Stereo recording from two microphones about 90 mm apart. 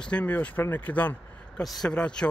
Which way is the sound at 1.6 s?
Centre (ahead or behind).